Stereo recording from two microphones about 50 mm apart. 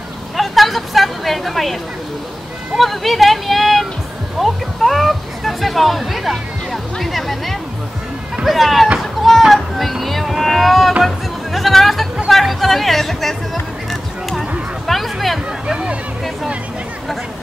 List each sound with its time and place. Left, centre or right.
0.4 s a sound: centre
2.7 s speech: centre
9.0 s a sound: centre
11.1 s music: centre
12.3 s speech: centre
14.9 s music: centre
15.6 s music: centre